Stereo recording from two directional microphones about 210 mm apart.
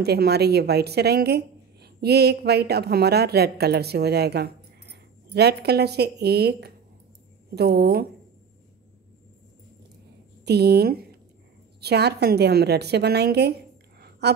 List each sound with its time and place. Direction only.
0.0 s speech: 50° right (ahead or behind)
10.4 s a woman's voice: 50° right (ahead or behind)